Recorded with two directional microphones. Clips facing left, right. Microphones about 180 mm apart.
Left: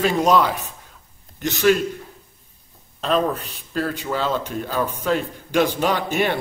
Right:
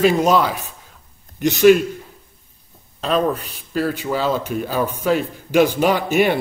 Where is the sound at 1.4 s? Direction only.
15° right (ahead or behind).